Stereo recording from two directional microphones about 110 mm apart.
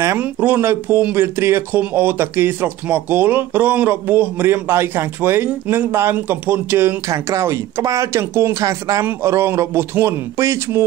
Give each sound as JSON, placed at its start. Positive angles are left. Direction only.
{"t": 0.2, "sound": "speech", "side_deg": -15}